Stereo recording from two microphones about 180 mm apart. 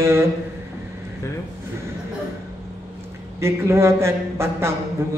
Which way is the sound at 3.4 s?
15° right (ahead or behind).